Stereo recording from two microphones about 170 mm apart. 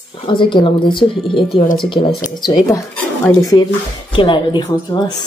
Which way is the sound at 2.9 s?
20° left (ahead or behind).